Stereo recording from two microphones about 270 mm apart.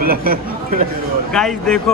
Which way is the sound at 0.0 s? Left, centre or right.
Right.